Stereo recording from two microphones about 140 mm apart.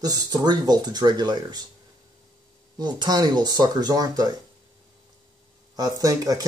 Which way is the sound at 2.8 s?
30° right (ahead or behind).